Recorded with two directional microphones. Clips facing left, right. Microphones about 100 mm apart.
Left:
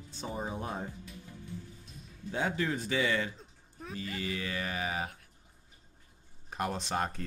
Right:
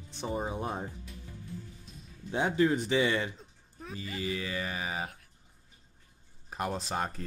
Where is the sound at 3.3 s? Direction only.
Centre (ahead or behind).